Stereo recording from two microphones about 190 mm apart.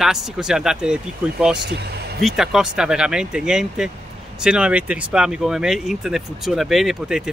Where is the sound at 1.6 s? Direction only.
60° right (ahead or behind).